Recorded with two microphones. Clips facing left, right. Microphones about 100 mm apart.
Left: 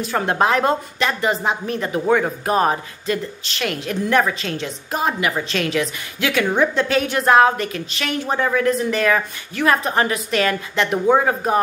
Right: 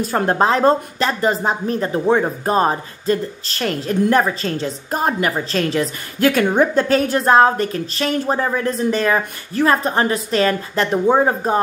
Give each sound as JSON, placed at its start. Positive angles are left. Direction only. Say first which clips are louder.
{"t": 0.0, "sound": "a woman's voice", "louder": "right 2 dB", "side_deg": -40}